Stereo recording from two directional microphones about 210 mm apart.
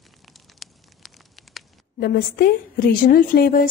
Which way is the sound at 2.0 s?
45° left (ahead or behind).